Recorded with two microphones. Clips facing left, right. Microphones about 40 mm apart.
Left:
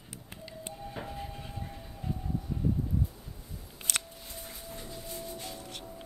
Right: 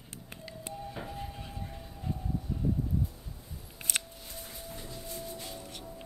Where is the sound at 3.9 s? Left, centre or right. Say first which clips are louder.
Even; left.